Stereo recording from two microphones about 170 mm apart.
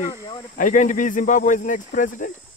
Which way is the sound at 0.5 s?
50° left (ahead or behind).